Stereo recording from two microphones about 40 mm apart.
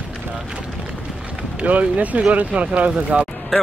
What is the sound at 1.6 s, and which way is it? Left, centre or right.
Speech, right.